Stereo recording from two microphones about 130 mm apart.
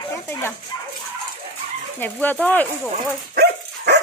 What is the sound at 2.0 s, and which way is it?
Speech, 15° left (ahead or behind).